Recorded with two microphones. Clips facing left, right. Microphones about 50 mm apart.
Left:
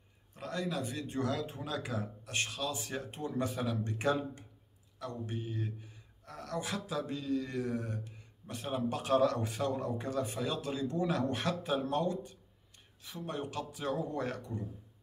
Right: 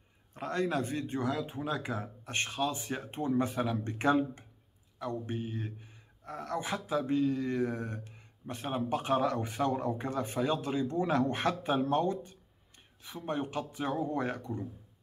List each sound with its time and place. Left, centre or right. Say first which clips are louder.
0.3 s speech: right 5 dB; right